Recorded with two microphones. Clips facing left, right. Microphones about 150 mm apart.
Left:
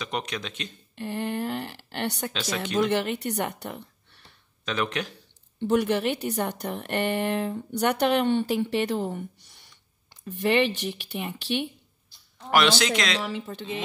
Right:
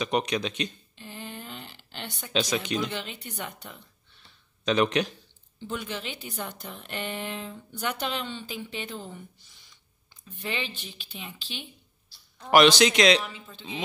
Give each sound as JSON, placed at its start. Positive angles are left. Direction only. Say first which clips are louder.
{"t": 0.0, "sound": "a man's voice", "louder": "right 5 dB", "side_deg": -15}
{"t": 0.9, "sound": "a woman's voice", "louder": "left 11 dB", "side_deg": 70}
{"t": 2.3, "sound": "a man's voice", "louder": "right 4 dB", "side_deg": -20}
{"t": 2.6, "sound": "speech", "louder": "left 7 dB", "side_deg": 70}
{"t": 4.6, "sound": "a man's voice", "louder": "right 5 dB", "side_deg": -20}
{"t": 5.6, "sound": "a woman's voice", "louder": "left 12 dB", "side_deg": 65}
{"t": 12.4, "sound": "a man's voice", "louder": "right 4 dB", "side_deg": -15}
{"t": 13.2, "sound": "a woman's voice", "louder": "left 8 dB", "side_deg": 75}